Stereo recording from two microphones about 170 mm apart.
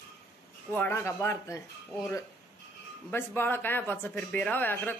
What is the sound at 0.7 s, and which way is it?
Speech, 10° left (ahead or behind).